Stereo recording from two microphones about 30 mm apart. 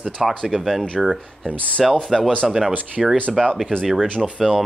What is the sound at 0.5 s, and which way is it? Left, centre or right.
Speech, centre.